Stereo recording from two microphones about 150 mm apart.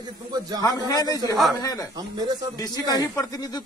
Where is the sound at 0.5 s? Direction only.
25° left (ahead or behind).